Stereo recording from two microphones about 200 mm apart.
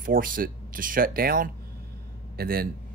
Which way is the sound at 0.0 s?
45° right (ahead or behind).